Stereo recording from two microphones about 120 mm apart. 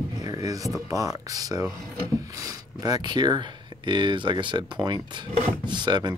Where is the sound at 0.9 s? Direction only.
30° right (ahead or behind).